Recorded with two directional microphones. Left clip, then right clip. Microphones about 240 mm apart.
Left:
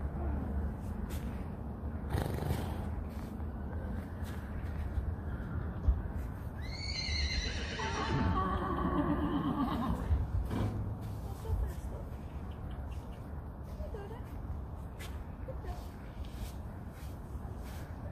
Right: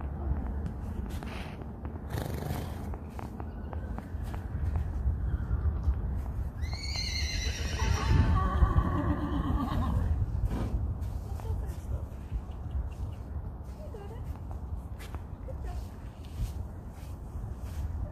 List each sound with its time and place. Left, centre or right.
2.0 s purr: right
6.9 s neigh: right
8.3 s music: right